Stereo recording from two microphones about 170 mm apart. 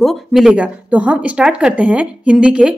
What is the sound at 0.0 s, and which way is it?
Speech, centre (ahead or behind).